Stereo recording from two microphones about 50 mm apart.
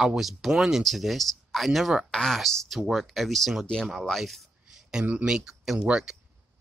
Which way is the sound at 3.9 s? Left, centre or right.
Centre.